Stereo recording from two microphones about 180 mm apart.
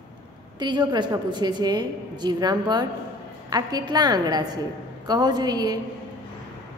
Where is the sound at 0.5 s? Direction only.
25° right (ahead or behind).